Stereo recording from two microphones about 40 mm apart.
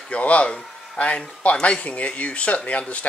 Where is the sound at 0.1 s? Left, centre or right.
Left.